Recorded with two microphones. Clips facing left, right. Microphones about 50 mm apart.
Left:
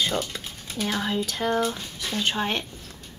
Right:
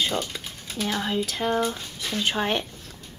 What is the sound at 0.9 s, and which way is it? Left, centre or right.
Speech, centre.